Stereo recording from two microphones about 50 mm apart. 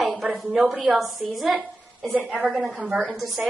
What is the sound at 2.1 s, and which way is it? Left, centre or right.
Speech, centre.